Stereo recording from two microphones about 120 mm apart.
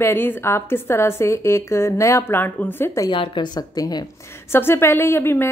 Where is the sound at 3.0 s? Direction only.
40° left (ahead or behind).